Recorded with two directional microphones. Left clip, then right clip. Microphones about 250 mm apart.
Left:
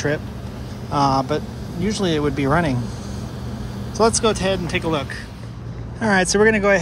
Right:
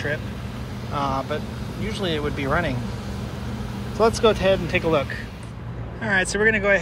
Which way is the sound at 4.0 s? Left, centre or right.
Centre.